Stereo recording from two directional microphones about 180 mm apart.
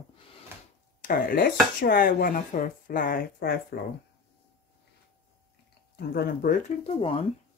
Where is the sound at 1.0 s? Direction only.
50° left (ahead or behind).